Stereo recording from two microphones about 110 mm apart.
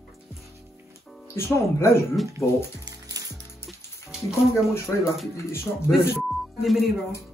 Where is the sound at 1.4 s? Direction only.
25° left (ahead or behind).